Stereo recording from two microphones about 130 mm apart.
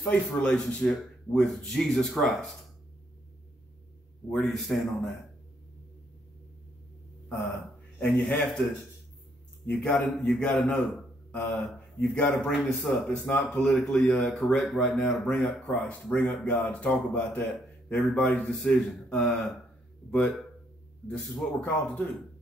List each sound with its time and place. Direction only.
0.0 s a man's voice: 10° left (ahead or behind)
4.3 s a man's voice: centre (ahead or behind)
7.2 s speech: 10° left (ahead or behind)
9.7 s a man's voice: 10° left (ahead or behind)
17.5 s a sound: 10° left (ahead or behind)
18.1 s a man's voice: 10° left (ahead or behind)